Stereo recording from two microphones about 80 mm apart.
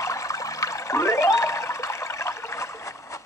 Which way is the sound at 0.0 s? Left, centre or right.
Left.